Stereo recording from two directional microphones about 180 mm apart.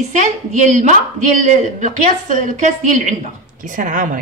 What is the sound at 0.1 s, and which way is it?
A woman's voice, 40° right (ahead or behind).